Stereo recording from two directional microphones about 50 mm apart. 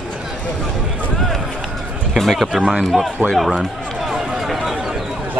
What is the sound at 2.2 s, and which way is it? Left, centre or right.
Speech, centre.